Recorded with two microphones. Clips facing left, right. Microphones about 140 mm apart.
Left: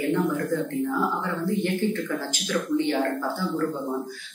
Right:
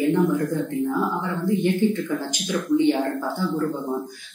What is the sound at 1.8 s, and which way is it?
Speech, 15° right (ahead or behind).